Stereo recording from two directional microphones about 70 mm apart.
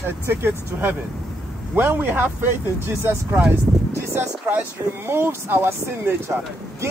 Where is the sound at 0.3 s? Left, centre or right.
Right.